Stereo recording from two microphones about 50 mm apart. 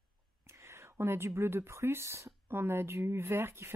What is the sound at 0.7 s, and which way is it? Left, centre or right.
Speech, right.